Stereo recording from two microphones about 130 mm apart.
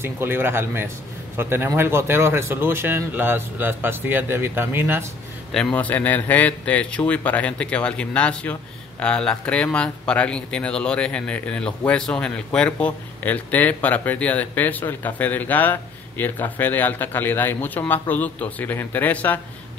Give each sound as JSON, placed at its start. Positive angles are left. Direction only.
{"t": 0.0, "sound": "a man's voice", "side_deg": -15}
{"t": 5.5, "sound": "speech", "side_deg": 5}